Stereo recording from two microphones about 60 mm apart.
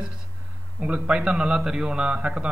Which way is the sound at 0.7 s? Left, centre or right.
Centre.